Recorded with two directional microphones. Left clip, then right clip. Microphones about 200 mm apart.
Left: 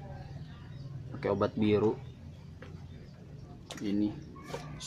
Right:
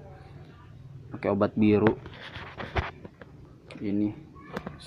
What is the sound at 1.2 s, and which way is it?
Speech, 15° right (ahead or behind).